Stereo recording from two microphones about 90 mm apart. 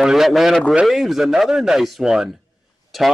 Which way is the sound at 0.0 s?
5° right (ahead or behind).